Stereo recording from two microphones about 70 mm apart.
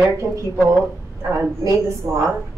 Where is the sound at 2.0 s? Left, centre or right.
Right.